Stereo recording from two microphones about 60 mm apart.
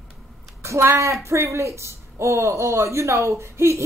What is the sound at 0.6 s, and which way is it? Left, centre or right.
A woman's voice, right.